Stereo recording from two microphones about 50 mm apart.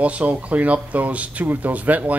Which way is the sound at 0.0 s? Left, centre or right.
Right.